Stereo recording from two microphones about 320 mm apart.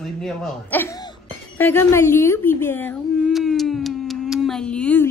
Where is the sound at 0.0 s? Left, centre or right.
Centre.